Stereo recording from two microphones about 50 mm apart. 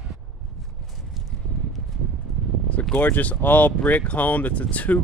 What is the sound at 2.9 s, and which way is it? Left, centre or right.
Speech, left.